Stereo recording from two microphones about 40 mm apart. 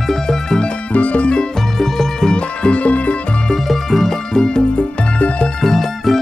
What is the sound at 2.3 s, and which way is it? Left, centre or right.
Music, left.